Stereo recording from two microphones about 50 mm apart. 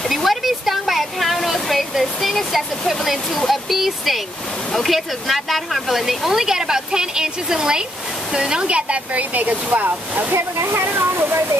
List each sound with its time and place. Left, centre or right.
0.1 s a sound: centre
4.7 s speech: centre; by 10.2 s right
10.3 s speech: right